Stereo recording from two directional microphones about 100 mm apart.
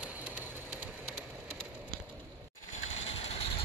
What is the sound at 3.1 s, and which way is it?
Vehicle, 90° left.